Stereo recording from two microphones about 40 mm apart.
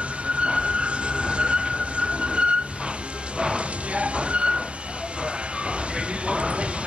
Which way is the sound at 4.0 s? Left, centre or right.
Right.